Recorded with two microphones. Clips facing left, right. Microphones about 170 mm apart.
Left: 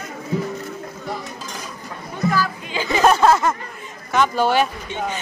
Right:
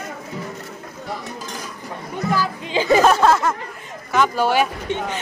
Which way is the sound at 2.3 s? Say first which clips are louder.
Right 2 dB; 25° right (ahead or behind).